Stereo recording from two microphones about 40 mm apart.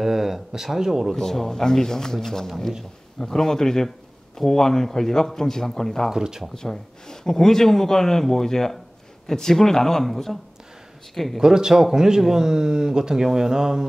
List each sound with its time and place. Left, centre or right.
0.0 s speech: centre
1.1 s speech: centre
6.0 s speech: centre
6.5 s speech: centre
11.4 s speech: centre